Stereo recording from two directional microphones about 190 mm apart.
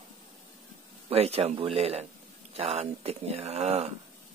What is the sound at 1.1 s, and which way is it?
Speech, 30° right (ahead or behind).